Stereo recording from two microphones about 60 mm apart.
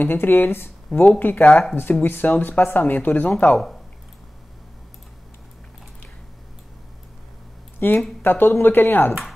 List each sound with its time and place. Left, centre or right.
0.0 s speech: left
1.5 s speech: centre
1.8 s speech: left
7.8 s speech: left